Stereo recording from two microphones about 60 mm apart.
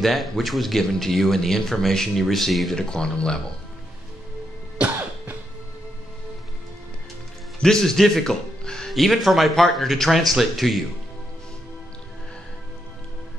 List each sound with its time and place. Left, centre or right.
0.0 s speech: centre
4.7 s cough: right
7.6 s speech: centre